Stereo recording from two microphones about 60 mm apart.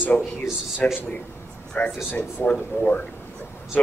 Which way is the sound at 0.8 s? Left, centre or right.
Left.